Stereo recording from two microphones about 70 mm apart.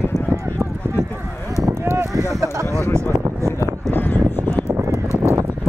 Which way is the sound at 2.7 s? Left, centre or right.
Left.